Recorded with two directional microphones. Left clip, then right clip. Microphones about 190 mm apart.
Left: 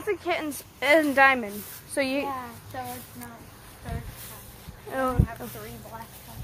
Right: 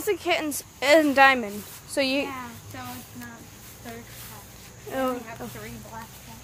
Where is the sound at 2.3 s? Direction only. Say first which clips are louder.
Left 2 dB; 40° right (ahead or behind).